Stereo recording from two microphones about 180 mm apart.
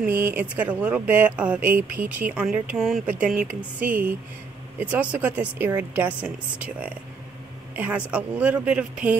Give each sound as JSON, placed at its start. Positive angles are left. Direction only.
{"t": 0.0, "sound": "speech", "side_deg": -10}
{"t": 3.8, "sound": "speech", "side_deg": -45}
{"t": 4.7, "sound": "speech", "side_deg": -10}